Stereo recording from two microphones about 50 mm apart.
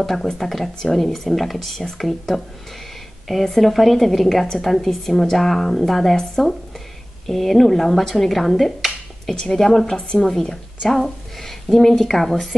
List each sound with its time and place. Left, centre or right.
0.0 s a woman's voice: centre